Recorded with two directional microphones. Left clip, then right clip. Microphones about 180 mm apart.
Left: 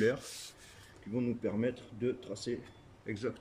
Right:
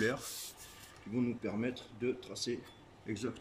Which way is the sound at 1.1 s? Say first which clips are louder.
Left 2 dB; 5° right (ahead or behind).